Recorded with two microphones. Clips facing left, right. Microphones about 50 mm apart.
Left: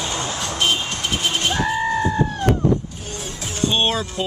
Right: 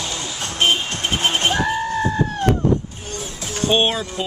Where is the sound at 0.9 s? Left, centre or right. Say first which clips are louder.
Right 2 dB; right.